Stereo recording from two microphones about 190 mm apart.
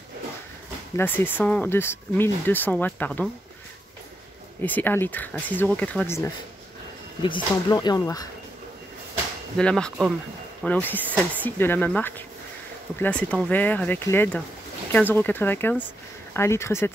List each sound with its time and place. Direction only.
0.9 s speech: 10° left (ahead or behind)
4.6 s speech: 10° left (ahead or behind)
7.2 s speech: 25° left (ahead or behind)
9.6 s speech: 5° left (ahead or behind)